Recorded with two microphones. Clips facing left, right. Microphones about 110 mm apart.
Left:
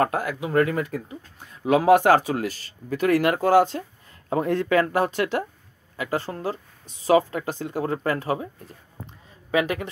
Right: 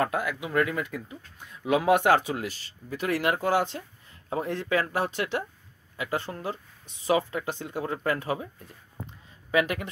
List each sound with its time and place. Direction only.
0.0 s speech: 40° left (ahead or behind)
9.5 s speech: 30° left (ahead or behind)